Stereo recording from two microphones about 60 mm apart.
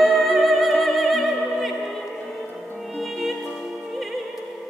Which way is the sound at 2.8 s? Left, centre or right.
Centre.